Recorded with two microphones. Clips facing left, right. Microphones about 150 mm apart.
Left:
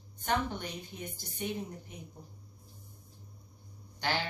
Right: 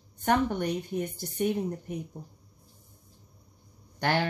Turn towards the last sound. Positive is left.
turn(degrees=-60)  # may be behind; listen again after turning